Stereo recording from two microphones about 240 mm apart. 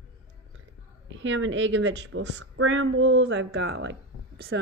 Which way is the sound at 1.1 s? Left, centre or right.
Right.